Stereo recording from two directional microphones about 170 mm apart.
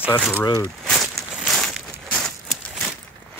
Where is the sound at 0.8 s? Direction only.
Centre (ahead or behind).